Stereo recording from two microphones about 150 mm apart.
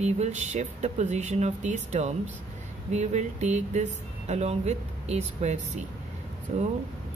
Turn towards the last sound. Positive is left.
turn(degrees=-50)  # may be behind; listen again after turning